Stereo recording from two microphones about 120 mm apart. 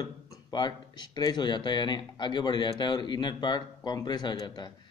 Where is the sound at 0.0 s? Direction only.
35° left (ahead or behind).